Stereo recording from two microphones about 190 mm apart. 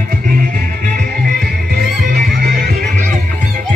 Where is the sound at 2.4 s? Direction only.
55° right (ahead or behind).